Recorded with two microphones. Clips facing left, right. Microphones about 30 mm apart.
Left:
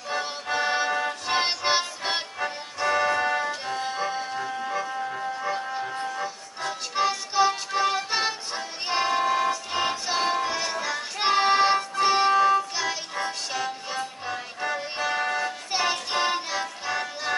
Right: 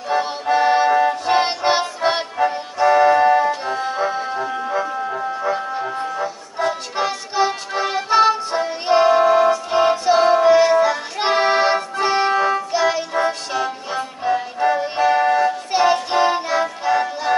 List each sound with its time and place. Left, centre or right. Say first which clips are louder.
0.1 s music: right 10 dB; centre
10.4 s music: right 15 dB; right